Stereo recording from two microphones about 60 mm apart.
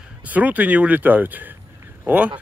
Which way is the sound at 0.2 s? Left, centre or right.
Right.